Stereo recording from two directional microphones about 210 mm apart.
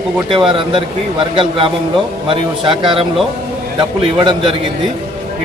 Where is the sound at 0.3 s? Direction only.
25° right (ahead or behind).